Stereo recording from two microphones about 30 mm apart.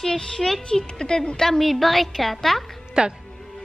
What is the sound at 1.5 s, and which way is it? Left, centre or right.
A woman's voice, centre.